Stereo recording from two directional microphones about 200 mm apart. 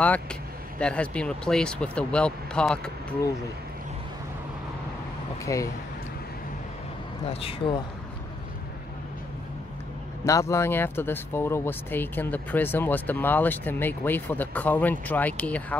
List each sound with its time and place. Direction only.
0.0 s speech: 5° left (ahead or behind)
5.4 s speech: 15° left (ahead or behind)
7.2 s speech: 30° left (ahead or behind)
10.2 s speech: 15° left (ahead or behind)